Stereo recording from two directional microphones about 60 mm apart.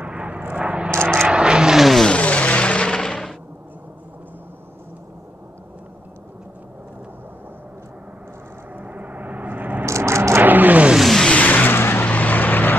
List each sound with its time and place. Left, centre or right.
0.0 s vehicle: right; by 2.0 s centre
2.0 s music: left
8.7 s vehicle: right
9.8 s vehicle: right
10.4 s a sound: right
11.0 s vehicle: centre
11.2 s vehicle: left